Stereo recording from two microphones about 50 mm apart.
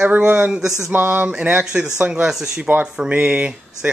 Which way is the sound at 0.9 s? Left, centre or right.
Right.